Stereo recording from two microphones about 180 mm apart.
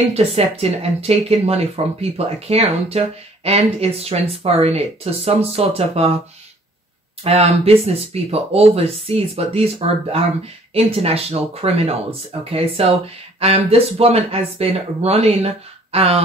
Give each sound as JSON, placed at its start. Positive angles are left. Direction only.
{"t": 0.1, "sound": "speech", "side_deg": -35}
{"t": 7.2, "sound": "speech", "side_deg": -35}